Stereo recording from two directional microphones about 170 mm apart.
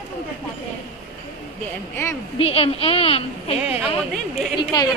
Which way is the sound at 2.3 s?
35° left (ahead or behind).